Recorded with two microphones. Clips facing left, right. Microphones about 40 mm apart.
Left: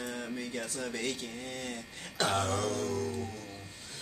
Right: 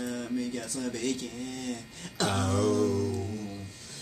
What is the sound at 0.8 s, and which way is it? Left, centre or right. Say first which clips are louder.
Speech: right 6 dB; centre.